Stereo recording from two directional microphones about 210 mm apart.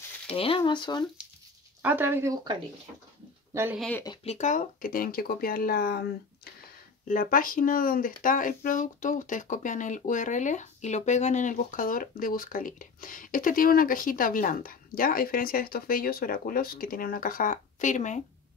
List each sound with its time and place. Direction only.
0.3 s speech: 25° left (ahead or behind)
1.8 s speech: 10° right (ahead or behind)
3.5 s speech: 10° right (ahead or behind)
4.0 s speech: 25° left (ahead or behind)